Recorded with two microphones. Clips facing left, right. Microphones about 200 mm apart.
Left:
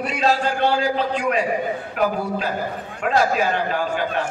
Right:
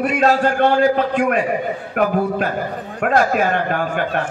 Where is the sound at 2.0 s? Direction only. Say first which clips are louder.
Right 3 dB; 55° right (ahead or behind).